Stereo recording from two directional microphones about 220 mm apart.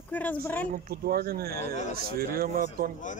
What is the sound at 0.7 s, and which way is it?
Speech, 40° right (ahead or behind).